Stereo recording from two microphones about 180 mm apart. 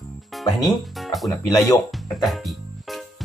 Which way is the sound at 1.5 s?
20° left (ahead or behind).